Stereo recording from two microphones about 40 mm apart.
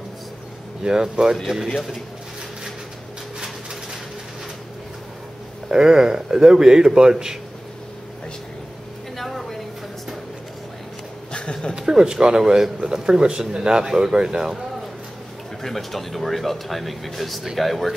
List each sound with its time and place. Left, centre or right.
0.8 s speech: centre
1.3 s speech: centre
5.7 s speech: right
9.2 s vehicle: centre
11.3 s a sound: left
11.7 s speech: centre
15.6 s speech: centre